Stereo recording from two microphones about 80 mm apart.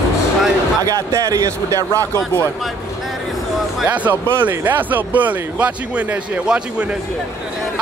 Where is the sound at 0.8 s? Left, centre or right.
Right.